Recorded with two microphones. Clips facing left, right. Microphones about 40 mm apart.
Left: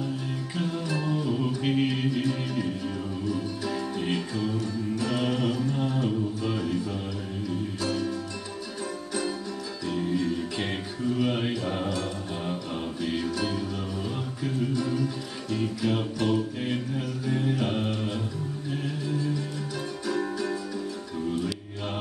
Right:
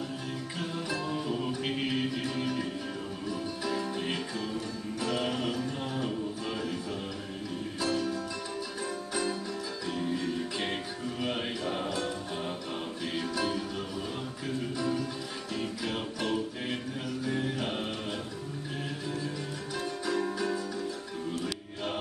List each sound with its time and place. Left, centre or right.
1.0 s music: centre
7.8 s music: centre
9.8 s music: centre
13.0 s music: centre